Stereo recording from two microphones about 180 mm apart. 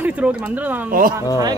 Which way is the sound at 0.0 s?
10° right (ahead or behind).